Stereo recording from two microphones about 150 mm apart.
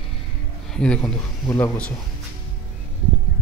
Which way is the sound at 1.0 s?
20° left (ahead or behind).